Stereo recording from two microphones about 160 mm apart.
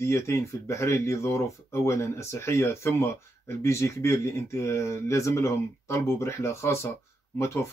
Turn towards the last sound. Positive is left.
turn(degrees=15)  # may be behind; listen again after turning